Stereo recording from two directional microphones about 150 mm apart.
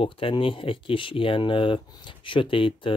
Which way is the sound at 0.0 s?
35° left (ahead or behind).